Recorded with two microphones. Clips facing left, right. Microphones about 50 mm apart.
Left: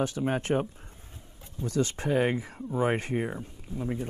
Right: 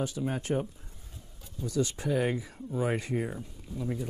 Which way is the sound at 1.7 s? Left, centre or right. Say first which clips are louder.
Left 2 dB; left.